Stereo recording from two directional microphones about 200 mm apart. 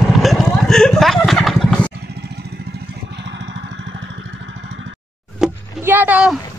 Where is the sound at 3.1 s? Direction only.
60° right (ahead or behind).